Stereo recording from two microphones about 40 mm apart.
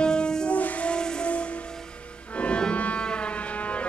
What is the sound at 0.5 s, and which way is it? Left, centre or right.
Train, left.